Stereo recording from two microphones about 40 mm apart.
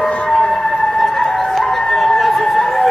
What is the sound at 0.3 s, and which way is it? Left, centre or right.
Music, centre.